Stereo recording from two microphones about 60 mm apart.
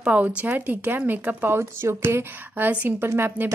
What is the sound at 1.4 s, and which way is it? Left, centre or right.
Speech, right.